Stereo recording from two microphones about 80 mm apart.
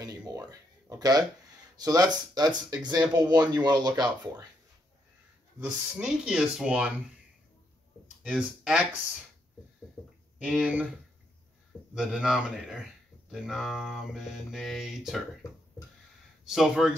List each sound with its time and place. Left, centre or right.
0.0 s a sound: right
1.8 s speech: right
5.8 s speech: centre
8.2 s speech: centre
10.0 s a sound: centre
10.4 s speech: centre
11.9 s speech: centre
16.4 s speech: centre